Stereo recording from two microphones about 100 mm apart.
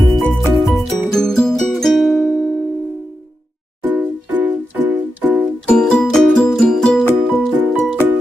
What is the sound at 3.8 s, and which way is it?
Music, 15° right (ahead or behind).